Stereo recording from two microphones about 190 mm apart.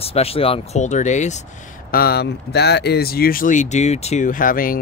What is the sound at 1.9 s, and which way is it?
Speech, 55° left (ahead or behind).